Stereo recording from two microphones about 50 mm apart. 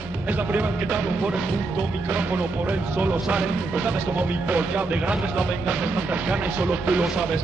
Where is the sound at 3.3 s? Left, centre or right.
Centre.